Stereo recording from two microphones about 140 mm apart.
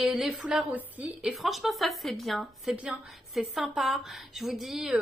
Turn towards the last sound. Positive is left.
turn(degrees=-5)  # may be behind; listen again after turning